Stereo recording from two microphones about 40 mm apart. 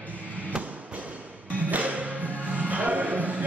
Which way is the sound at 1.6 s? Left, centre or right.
Right.